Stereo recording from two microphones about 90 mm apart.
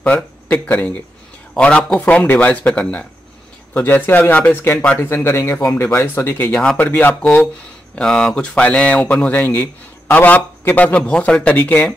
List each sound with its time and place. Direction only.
0.0 s speech: 15° left (ahead or behind)